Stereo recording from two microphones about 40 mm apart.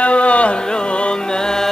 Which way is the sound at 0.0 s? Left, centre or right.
Left.